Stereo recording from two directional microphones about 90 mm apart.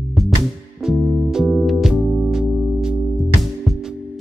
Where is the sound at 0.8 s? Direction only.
5° right (ahead or behind).